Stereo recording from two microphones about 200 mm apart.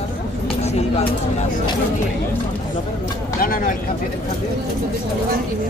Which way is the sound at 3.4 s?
45° left (ahead or behind).